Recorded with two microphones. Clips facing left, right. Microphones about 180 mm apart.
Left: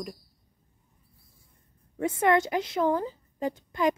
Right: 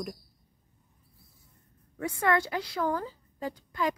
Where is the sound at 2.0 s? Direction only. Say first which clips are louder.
Left 4 dB; 20° left (ahead or behind).